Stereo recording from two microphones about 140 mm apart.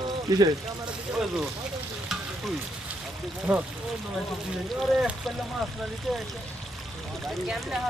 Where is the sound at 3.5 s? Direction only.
10° right (ahead or behind).